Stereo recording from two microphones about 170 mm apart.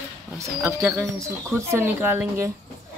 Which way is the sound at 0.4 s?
15° right (ahead or behind).